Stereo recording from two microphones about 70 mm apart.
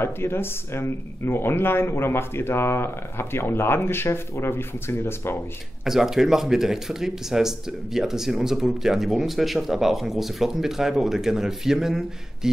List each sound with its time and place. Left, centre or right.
0.0 s speech: left
5.9 s speech: centre